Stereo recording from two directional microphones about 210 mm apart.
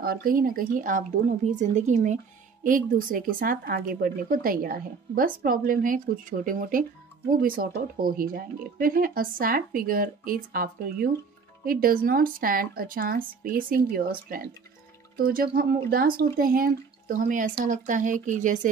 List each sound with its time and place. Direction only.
0.0 s speech: 45° right (ahead or behind)